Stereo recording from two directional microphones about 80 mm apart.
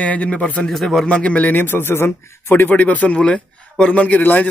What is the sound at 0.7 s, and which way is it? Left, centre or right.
A man's voice, centre.